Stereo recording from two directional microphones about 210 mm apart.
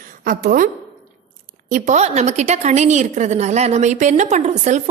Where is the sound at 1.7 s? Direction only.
35° right (ahead or behind).